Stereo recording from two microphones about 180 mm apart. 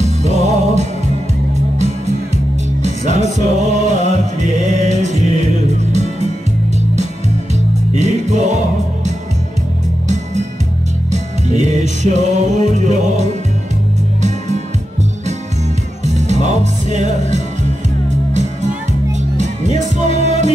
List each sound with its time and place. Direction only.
0.0 s music: 40° right (ahead or behind)
2.3 s music: 40° right (ahead or behind)
7.9 s music: 40° right (ahead or behind)
11.1 s music: 40° right (ahead or behind)
16.0 s music: 40° right (ahead or behind)